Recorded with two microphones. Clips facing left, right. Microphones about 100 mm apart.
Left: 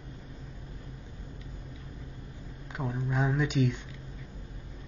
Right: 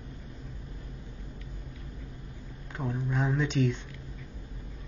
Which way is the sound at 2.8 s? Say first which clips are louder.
Right 1 dB; 20° left (ahead or behind).